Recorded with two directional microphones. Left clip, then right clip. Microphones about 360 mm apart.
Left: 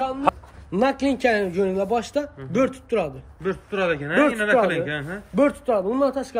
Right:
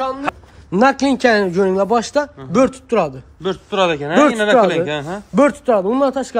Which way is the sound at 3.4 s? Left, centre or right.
Centre.